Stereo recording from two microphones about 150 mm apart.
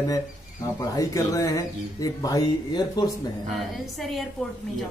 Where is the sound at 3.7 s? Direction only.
Centre (ahead or behind).